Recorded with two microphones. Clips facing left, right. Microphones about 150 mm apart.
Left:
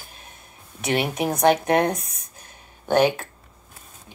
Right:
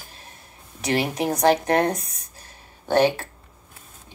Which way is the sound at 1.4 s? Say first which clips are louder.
Left 1 dB; 30° right (ahead or behind).